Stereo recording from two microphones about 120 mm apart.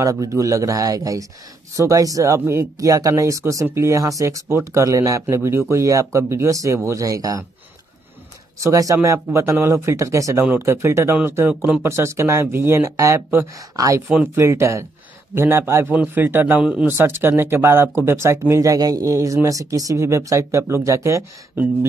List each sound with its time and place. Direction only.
0.0 s speech: 30° right (ahead or behind)
8.5 s speech: 25° right (ahead or behind)
14.0 s a man's voice: 15° right (ahead or behind)
14.4 s a man's voice: 25° right (ahead or behind)